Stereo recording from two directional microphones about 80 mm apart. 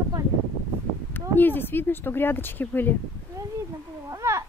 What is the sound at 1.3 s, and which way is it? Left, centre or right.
Speech, left.